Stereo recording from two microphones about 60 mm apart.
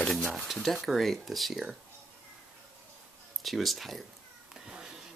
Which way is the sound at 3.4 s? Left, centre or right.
Centre.